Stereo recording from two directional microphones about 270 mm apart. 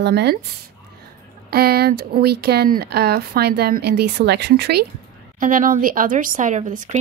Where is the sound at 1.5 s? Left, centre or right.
Right.